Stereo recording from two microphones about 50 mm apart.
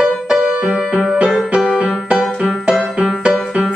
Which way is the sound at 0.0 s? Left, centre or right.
Centre.